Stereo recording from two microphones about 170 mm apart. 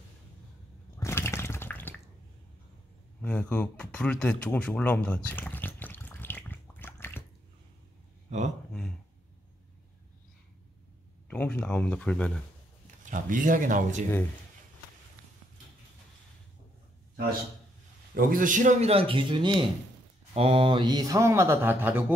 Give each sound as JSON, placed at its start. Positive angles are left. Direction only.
{"t": 0.9, "sound": "water", "side_deg": 15}
{"t": 3.2, "sound": "a sound", "side_deg": 5}
{"t": 11.2, "sound": "speech", "side_deg": 10}
{"t": 13.1, "sound": "speech", "side_deg": -50}
{"t": 18.1, "sound": "a man's voice", "side_deg": -55}